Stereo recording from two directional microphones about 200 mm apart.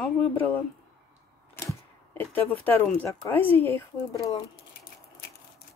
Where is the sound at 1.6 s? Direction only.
10° left (ahead or behind).